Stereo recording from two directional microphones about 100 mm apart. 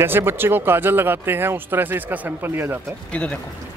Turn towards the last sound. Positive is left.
turn(degrees=10)  # may be behind; listen again after turning